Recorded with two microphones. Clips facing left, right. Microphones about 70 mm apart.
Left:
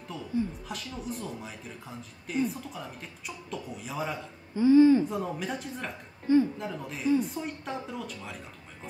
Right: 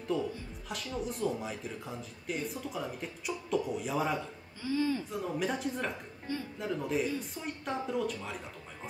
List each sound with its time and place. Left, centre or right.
0.1 s speech: centre
4.6 s speech: left
5.0 s speech: centre
6.3 s speech: left
6.6 s speech: centre